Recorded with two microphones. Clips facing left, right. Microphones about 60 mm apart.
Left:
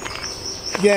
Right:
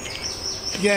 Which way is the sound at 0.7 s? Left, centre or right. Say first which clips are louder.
Left 6 dB; left.